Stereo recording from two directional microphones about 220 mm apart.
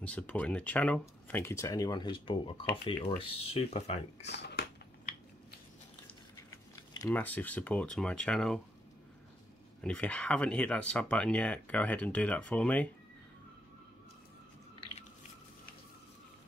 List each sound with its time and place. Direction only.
0.0 s speech: 5° left (ahead or behind); by 4.3 s 30° left (ahead or behind)
4.3 s a sound: 50° left (ahead or behind)
6.5 s speech: 15° left (ahead or behind)
9.8 s speech: 5° left (ahead or behind)